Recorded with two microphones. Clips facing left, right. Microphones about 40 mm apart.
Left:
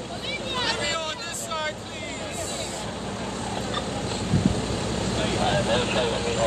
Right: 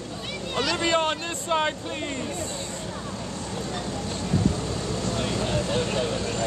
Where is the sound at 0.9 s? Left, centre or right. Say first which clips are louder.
Right 6 dB; right.